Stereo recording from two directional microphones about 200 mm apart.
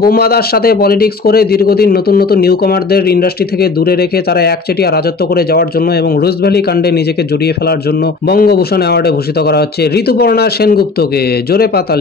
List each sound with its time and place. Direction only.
0.0 s speech: 50° left (ahead or behind)
8.3 s speech: 50° left (ahead or behind)